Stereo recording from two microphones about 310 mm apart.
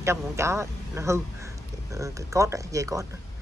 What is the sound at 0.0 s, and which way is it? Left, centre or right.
Speech, centre.